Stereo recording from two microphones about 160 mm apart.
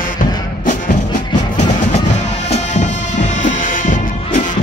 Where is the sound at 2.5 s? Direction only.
50° left (ahead or behind).